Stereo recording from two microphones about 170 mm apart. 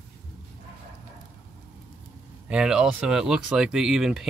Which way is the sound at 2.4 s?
5° right (ahead or behind).